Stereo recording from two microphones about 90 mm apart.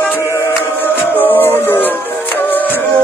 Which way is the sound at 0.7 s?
20° left (ahead or behind).